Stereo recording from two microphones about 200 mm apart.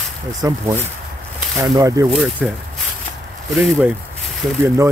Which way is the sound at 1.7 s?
15° right (ahead or behind).